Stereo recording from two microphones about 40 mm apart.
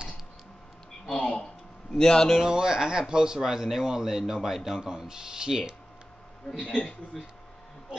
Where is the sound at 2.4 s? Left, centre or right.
Centre.